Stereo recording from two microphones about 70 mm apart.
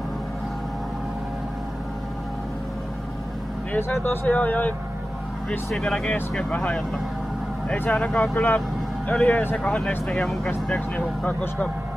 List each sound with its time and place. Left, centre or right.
3.7 s speech: left
5.7 s speech: centre; by 8.0 s left
8.0 s speech: centre
11.0 s speech: left